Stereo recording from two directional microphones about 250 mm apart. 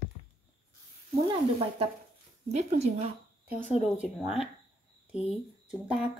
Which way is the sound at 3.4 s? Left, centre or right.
Centre.